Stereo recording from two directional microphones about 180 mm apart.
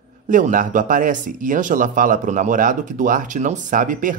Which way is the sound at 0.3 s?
50° right (ahead or behind).